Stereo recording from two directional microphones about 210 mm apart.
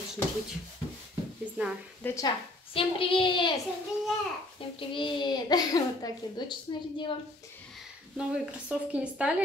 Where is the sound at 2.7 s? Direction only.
25° left (ahead or behind).